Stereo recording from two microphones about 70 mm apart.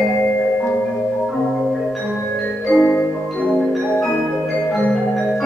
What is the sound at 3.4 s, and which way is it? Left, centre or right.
Music, centre.